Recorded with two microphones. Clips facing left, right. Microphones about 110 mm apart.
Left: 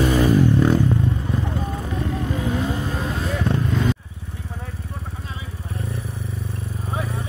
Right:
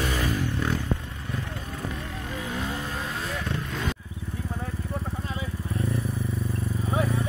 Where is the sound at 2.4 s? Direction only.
15° left (ahead or behind).